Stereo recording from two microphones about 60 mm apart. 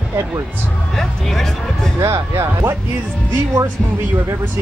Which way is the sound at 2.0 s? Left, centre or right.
Right.